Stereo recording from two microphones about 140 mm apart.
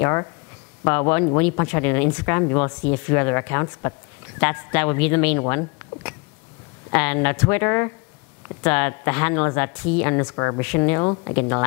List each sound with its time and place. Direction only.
0.0 s speech: 20° left (ahead or behind)